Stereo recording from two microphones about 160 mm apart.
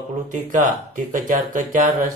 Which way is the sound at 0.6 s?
55° right (ahead or behind).